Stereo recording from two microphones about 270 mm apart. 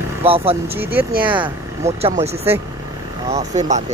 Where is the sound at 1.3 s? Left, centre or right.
Centre.